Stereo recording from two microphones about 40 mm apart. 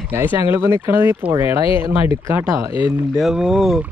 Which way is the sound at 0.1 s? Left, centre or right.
Right.